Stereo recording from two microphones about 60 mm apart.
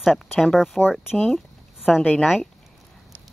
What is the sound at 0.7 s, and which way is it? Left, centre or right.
Speech, left.